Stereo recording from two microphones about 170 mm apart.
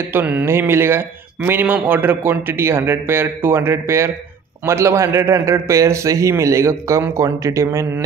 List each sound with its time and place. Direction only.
0.1 s speech: 10° right (ahead or behind)